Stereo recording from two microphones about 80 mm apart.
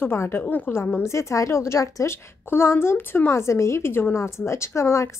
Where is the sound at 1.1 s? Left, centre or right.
Left.